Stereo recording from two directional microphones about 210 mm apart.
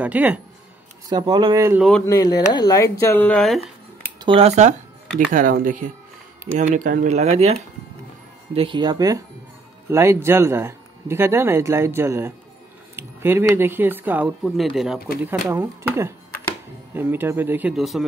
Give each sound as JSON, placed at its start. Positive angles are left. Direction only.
{"t": 0.0, "sound": "speech", "side_deg": -5}
{"t": 1.0, "sound": "speech", "side_deg": -20}
{"t": 1.8, "sound": "speech", "side_deg": 0}
{"t": 2.0, "sound": "speech", "side_deg": 20}
{"t": 4.2, "sound": "speech", "side_deg": -25}
{"t": 8.5, "sound": "speech", "side_deg": -25}